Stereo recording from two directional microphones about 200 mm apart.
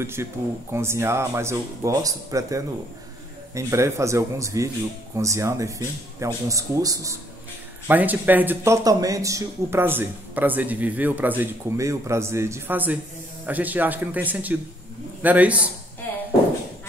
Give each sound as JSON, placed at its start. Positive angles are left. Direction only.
{"t": 0.0, "sound": "speech", "side_deg": -10}